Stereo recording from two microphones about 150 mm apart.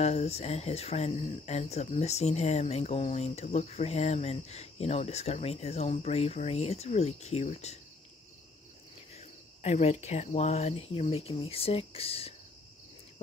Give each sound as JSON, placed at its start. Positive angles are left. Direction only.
{"t": 0.0, "sound": "speech", "side_deg": 45}
{"t": 9.1, "sound": "speech", "side_deg": 50}